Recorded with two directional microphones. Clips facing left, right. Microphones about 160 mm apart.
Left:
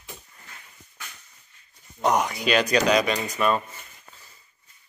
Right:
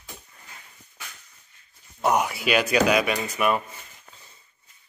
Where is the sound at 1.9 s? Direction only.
10° right (ahead or behind).